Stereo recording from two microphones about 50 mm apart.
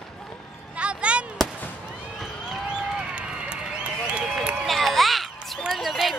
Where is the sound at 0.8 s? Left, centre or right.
Right.